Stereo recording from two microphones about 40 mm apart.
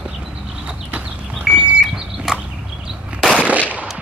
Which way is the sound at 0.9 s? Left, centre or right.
Right.